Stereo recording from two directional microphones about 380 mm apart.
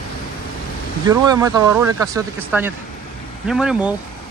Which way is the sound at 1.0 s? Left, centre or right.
Centre.